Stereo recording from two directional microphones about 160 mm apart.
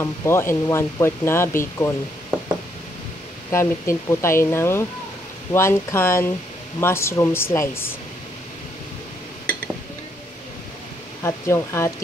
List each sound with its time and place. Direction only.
0.0 s speech: 15° left (ahead or behind)
3.5 s speech: 15° left (ahead or behind)
11.2 s speech: 15° left (ahead or behind)